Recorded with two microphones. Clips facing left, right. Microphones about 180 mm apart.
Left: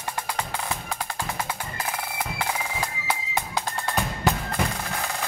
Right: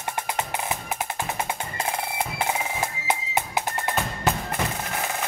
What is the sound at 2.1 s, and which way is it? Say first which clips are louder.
Music: right 1 dB; 25° right (ahead or behind).